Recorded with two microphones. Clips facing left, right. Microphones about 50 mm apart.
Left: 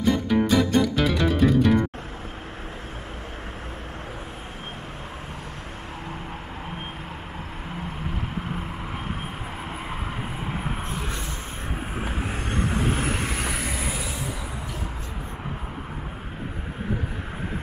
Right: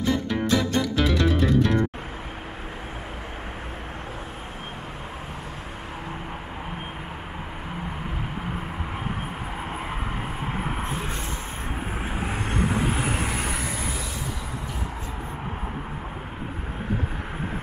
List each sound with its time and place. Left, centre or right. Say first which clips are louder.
0.0 s music: left 3 dB; centre
10.8 s a sound: right 2 dB; right
12.1 s vehicle: right 3 dB; centre